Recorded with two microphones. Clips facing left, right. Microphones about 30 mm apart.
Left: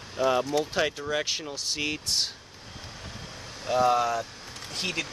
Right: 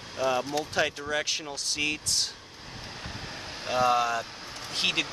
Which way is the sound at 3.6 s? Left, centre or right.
Right.